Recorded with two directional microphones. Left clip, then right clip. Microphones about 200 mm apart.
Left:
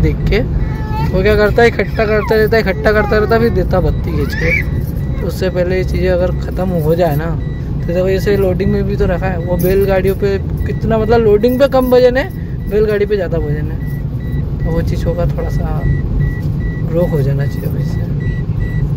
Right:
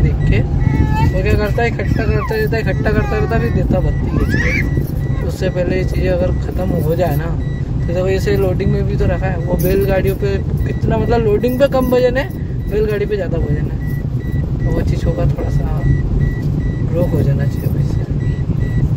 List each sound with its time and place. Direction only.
1.2 s speech: 25° left (ahead or behind)
5.4 s speech: 20° left (ahead or behind)
7.9 s speech: 5° left (ahead or behind)